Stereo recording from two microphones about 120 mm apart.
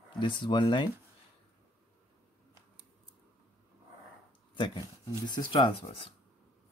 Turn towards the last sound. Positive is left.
turn(degrees=40)  # may be behind; listen again after turning